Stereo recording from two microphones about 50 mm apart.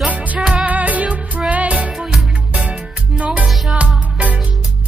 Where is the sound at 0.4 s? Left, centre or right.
Centre.